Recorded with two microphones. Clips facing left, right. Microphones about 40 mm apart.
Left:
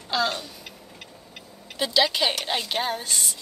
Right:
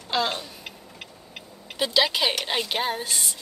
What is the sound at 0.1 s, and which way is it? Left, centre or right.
Speech, centre.